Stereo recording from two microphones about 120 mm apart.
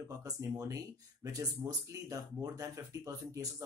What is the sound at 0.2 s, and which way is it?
Speech, 25° right (ahead or behind).